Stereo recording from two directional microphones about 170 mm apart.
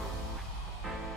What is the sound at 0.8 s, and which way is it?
Music, centre (ahead or behind).